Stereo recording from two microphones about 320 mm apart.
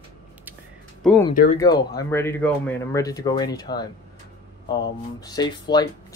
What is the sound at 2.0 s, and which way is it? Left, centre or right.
Speech, centre.